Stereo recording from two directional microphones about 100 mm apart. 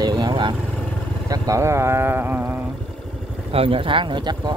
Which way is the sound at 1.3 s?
30° right (ahead or behind).